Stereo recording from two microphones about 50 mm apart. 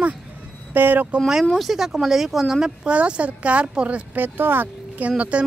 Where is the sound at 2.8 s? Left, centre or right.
Right.